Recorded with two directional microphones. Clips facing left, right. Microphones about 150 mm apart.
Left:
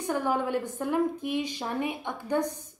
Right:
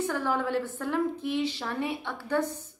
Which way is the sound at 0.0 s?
15° left (ahead or behind).